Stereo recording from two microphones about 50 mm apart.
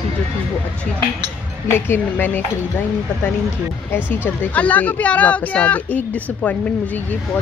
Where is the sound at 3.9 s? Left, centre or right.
Left.